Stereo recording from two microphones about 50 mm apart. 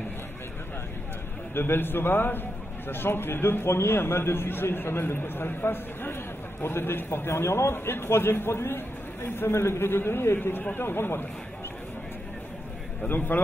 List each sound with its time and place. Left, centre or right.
1.5 s a man's voice: left